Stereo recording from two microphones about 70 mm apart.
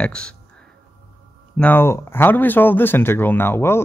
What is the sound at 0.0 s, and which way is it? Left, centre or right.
Speech, centre.